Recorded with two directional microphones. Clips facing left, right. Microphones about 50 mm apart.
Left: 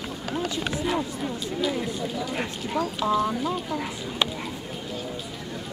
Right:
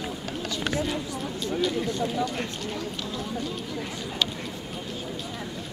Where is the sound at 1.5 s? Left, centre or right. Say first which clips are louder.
Right 2 dB; centre.